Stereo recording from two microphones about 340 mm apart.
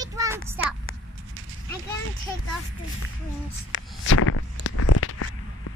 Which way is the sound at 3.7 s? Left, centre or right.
Left.